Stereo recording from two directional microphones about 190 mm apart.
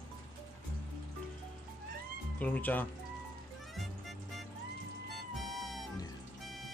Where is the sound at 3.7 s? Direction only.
Centre (ahead or behind).